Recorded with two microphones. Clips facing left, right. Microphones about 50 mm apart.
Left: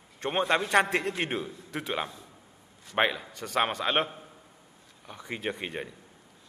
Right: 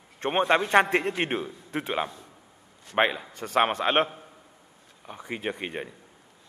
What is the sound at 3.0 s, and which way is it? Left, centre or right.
Speech, centre.